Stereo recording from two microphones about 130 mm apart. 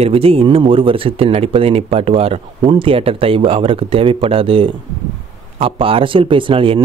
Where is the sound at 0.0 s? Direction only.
50° right (ahead or behind).